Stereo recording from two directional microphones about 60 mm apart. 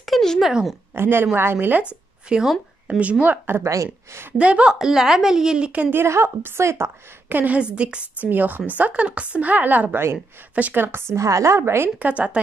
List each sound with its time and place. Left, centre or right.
0.0 s a sound: centre
0.4 s a woman's voice: centre
0.9 s a woman's voice: right
2.2 s speech: centre
3.6 s a woman's voice: right
4.4 s speech: right
4.7 s a woman's voice: centre
5.9 s a woman's voice: right
7.2 s a woman's voice: right
7.5 s speech: centre
8.3 s a woman's voice: right
10.8 s a woman's voice: right
11.1 s a woman's voice: right
12.0 s speech: right